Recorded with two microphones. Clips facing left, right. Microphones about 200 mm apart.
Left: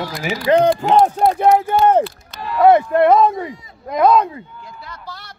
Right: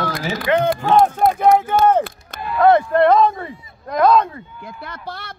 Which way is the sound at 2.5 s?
10° left (ahead or behind).